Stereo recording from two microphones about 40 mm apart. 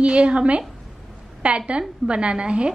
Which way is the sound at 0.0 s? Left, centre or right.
Right.